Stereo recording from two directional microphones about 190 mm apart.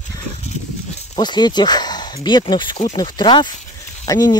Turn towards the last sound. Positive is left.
turn(degrees=20)  # may be behind; listen again after turning